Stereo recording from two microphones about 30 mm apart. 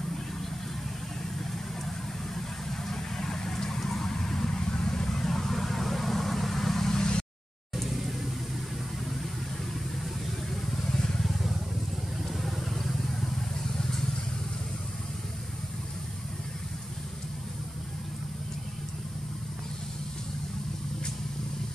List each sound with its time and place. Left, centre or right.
1.5 s vehicle: centre
5.2 s vehicle: centre
7.0 s a sound: left
10.9 s vehicle: left
12.2 s vehicle: centre
13.7 s vehicle: centre